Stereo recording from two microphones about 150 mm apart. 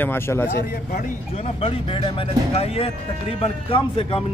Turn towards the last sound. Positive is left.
turn(degrees=35)  # may be behind; listen again after turning